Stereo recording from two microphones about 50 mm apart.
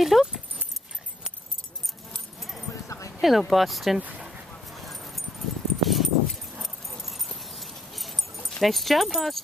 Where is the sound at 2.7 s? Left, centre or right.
Left.